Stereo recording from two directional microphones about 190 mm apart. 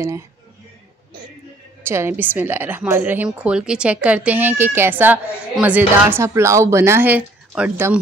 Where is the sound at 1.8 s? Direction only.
15° right (ahead or behind).